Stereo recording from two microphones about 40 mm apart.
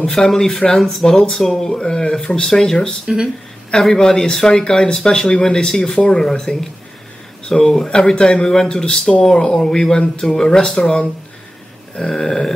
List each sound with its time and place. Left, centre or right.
0.0 s speech: centre
11.9 s speech: centre